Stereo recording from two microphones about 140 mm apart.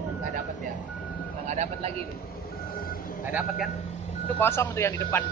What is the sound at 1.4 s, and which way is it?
Vehicle, 55° right (ahead or behind).